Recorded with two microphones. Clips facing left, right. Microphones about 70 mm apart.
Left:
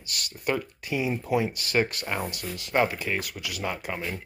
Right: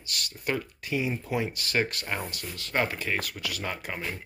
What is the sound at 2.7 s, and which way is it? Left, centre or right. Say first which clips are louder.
Speech: left 3 dB; centre.